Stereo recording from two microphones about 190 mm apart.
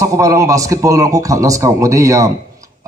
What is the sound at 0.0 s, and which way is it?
A man's voice, 15° right (ahead or behind).